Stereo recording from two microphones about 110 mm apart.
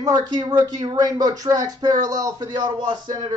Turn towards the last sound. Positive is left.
turn(degrees=-40)  # may be behind; listen again after turning